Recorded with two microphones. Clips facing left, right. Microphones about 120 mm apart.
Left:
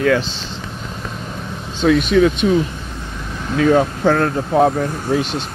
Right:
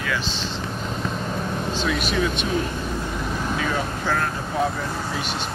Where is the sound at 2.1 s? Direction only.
90° left.